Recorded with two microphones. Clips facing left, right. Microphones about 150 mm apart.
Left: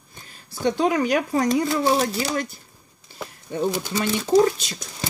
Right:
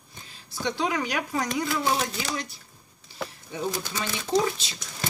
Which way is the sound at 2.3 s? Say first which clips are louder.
Left 7 dB; 55° left (ahead or behind).